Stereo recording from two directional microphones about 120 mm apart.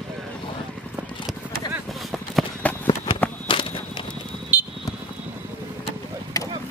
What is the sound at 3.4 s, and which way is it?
Walk, 45° left (ahead or behind).